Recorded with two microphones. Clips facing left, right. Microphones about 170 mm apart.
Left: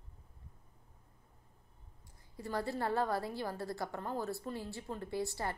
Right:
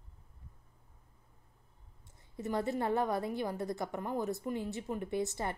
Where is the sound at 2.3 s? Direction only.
20° right (ahead or behind).